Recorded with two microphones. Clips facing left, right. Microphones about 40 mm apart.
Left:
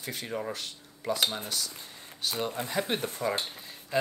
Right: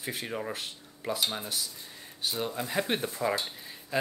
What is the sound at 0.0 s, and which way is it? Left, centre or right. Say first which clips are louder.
Speech: even; centre.